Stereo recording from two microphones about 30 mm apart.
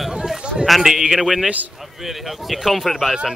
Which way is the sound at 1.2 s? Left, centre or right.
Centre.